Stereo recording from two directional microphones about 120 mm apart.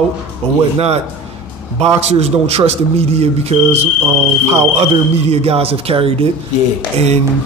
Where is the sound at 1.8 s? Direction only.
60° right (ahead or behind).